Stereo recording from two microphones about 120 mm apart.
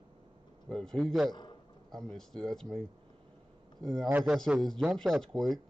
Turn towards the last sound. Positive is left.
turn(degrees=5)  # may be behind; listen again after turning